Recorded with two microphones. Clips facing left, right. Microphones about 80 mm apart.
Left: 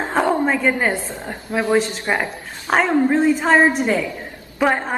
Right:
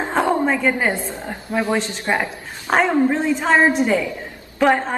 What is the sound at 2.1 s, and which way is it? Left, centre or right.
A woman's voice, centre.